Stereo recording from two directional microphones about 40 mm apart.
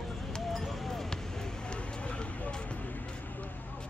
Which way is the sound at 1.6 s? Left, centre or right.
Left.